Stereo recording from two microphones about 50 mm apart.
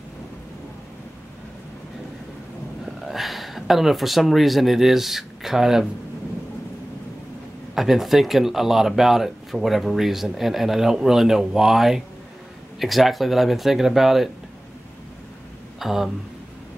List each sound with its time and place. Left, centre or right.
2.8 s speech: centre
7.7 s speech: centre
15.8 s speech: centre